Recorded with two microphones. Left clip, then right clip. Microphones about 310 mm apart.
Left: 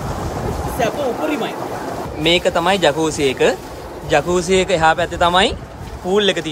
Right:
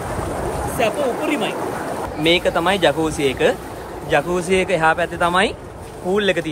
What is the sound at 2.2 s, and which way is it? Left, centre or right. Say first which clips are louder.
A woman's voice: left 2 dB; centre.